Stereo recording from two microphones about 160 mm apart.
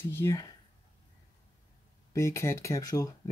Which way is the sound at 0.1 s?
20° left (ahead or behind).